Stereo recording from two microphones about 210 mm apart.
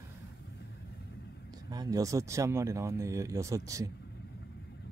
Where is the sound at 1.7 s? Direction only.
15° right (ahead or behind).